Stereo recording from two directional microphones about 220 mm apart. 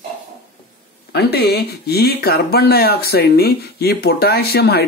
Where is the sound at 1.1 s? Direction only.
50° left (ahead or behind).